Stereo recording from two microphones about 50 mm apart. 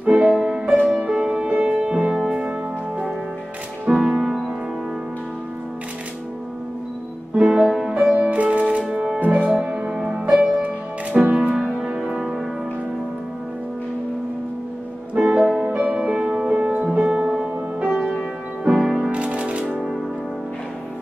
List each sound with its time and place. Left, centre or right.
0.0 s music: right
0.4 s music: centre
3.9 s music: right
4.2 s music: centre
7.3 s music: right
9.2 s music: right
9.5 s music: centre
11.4 s music: centre
15.1 s music: centre
15.6 s music: right
15.9 s music: centre
18.7 s music: centre